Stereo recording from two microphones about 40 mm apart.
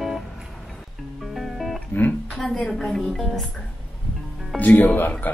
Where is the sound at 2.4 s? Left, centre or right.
Centre.